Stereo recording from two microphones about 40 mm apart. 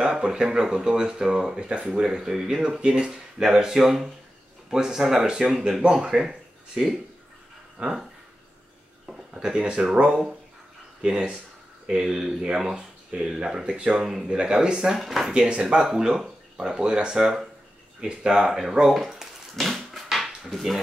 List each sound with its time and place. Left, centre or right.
0.0 s speech: centre
7.8 s speech: right
9.0 s a sound: centre
9.6 s speech: right
11.0 s speech: right
15.0 s speech: centre
15.3 s speech: right
17.2 s speech: centre
19.8 s a sound: centre